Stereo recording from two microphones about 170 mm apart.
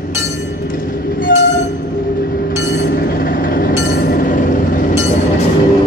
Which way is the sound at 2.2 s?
60° left (ahead or behind).